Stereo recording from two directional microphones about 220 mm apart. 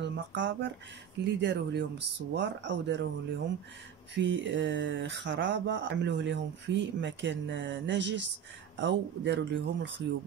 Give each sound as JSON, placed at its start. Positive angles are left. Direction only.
{"t": 0.1, "sound": "speech", "side_deg": -55}